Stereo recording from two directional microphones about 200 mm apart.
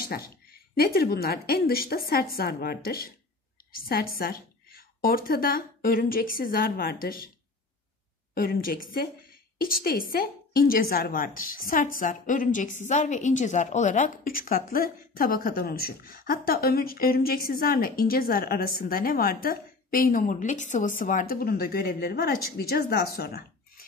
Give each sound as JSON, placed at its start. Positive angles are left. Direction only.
{"t": 0.0, "sound": "a woman's voice", "side_deg": 50}
{"t": 8.4, "sound": "a woman's voice", "side_deg": 45}